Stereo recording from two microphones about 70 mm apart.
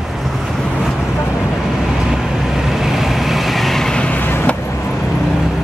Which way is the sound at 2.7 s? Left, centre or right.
Centre.